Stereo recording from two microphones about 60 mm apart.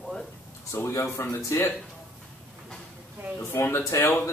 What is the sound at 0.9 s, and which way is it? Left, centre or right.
Speech, left.